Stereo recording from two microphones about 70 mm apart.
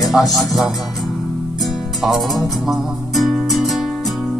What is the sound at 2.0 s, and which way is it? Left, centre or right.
Music, centre.